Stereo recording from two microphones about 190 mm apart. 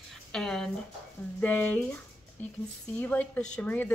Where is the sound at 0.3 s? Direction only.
5° left (ahead or behind).